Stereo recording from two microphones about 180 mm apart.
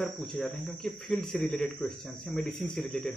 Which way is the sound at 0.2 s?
Centre (ahead or behind).